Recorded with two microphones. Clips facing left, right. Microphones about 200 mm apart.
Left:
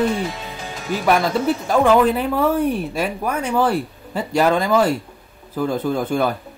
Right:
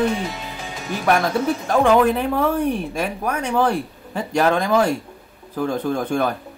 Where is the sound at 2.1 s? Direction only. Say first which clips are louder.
Left 1 dB; 5° left (ahead or behind).